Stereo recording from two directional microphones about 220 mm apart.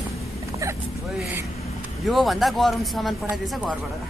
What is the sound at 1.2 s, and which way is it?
A woman's voice, 5° right (ahead or behind).